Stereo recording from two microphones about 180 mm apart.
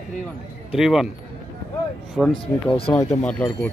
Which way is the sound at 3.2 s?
10° left (ahead or behind).